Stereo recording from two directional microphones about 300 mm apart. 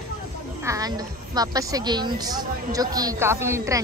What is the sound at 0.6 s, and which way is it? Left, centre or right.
A woman's voice, centre.